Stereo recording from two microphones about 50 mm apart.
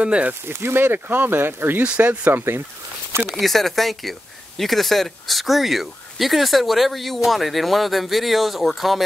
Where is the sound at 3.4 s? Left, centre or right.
Centre.